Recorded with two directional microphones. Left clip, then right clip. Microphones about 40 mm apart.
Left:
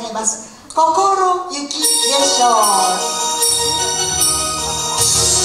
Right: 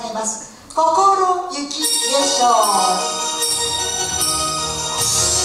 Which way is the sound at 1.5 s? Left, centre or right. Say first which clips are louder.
Left 2 dB; left.